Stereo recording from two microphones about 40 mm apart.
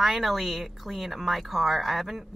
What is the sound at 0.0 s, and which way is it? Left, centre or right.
Speech, centre.